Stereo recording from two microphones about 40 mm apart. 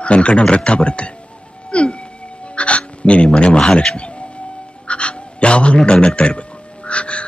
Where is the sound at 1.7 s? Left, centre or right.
Left.